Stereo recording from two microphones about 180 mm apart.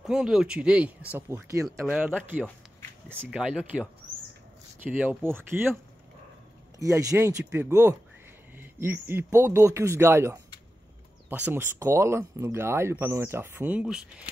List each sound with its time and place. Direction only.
0.0 s speech: 5° right (ahead or behind)
1.9 s speech: 5° right (ahead or behind)
6.8 s speech: 15° right (ahead or behind)